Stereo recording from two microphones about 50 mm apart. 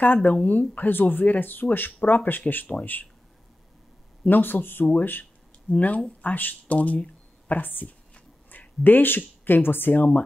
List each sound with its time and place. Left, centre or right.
0.0 s speech: left
4.2 s speech: left
5.7 s speech: left
8.5 s a sound: left
9.4 s speech: left